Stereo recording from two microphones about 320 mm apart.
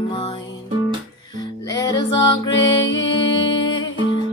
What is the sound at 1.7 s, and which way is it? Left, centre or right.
Music, centre.